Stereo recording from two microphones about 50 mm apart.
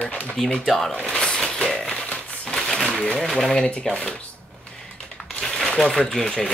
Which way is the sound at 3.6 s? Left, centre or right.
Left.